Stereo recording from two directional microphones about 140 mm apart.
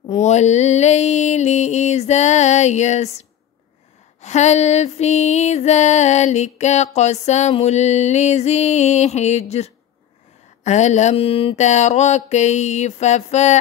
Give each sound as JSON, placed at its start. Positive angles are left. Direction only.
{"t": 0.1, "sound": "music", "side_deg": 55}